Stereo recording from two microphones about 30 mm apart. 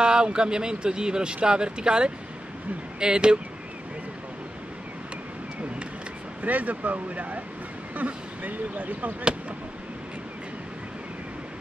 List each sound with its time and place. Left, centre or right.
0.0 s speech: right
6.4 s speech: right